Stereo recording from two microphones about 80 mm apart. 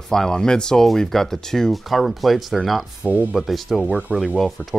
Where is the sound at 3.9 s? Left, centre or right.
Centre.